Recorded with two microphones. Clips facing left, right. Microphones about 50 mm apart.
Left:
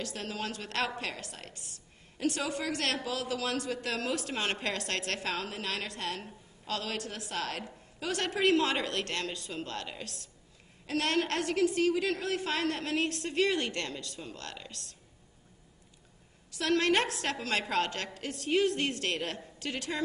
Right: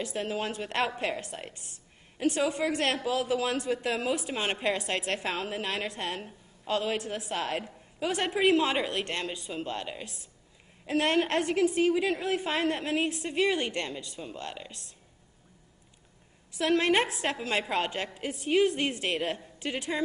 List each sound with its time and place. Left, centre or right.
0.0 s a woman's voice: right
16.5 s a woman's voice: right